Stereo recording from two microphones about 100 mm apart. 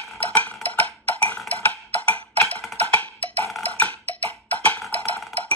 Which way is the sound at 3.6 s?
15° left (ahead or behind).